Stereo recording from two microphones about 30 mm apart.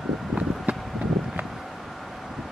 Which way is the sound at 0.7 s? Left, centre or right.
Right.